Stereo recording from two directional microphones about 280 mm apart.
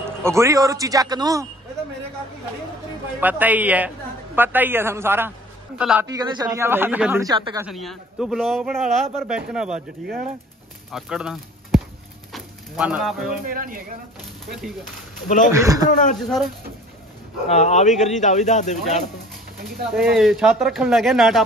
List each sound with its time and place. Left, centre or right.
0.2 s speech: centre
3.2 s a man's voice: centre
6.2 s speech: centre
7.6 s a man's voice: centre
12.3 s bird: centre
13.5 s speech: right
15.2 s speech: left
15.5 s speech: centre
15.9 s speech: left
16.2 s a man's voice: centre
17.5 s speech: left
19.9 s a man's voice: centre